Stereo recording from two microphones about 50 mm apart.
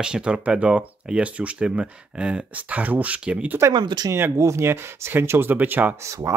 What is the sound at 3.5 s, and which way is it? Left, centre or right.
Speech, right.